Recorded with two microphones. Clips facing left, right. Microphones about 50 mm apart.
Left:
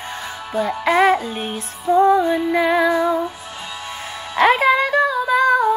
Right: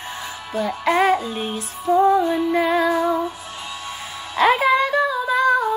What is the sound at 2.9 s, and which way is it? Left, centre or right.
Music, centre.